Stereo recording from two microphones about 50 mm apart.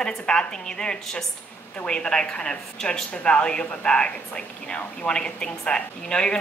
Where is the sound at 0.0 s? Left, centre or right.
Centre.